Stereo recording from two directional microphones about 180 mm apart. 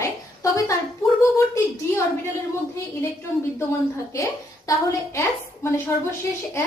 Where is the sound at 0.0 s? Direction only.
15° left (ahead or behind).